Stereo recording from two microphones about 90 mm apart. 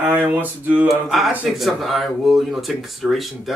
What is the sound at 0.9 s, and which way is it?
Speech, centre (ahead or behind).